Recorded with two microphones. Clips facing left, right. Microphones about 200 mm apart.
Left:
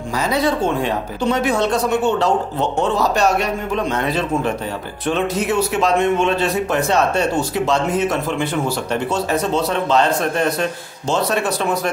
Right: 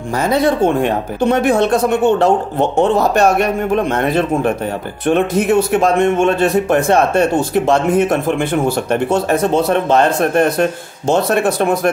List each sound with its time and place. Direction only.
0.2 s speech: 55° right (ahead or behind)